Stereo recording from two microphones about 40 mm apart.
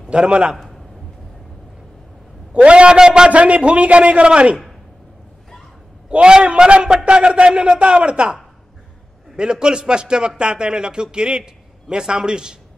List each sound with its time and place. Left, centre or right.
0.1 s a man's voice: right
0.6 s a sound: centre
2.5 s a man's voice: right
3.3 s a man's voice: right
6.0 s a man's voice: right
9.4 s a man's voice: right